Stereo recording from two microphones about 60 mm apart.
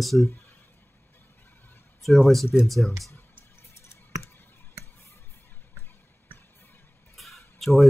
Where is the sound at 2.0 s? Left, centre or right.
Centre.